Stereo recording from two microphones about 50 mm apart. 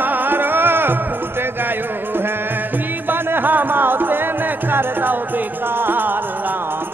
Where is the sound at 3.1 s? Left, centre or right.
Right.